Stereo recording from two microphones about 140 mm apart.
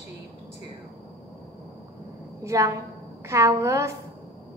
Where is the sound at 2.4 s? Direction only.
25° right (ahead or behind).